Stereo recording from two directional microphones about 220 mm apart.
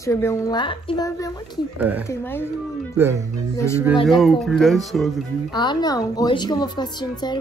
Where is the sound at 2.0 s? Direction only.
10° left (ahead or behind).